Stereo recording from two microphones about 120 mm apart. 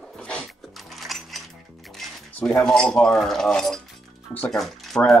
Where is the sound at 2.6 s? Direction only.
5° left (ahead or behind).